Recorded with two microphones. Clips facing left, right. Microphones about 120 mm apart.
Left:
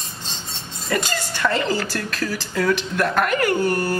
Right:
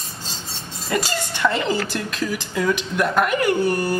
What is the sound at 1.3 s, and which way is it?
A woman's voice, 20° right (ahead or behind).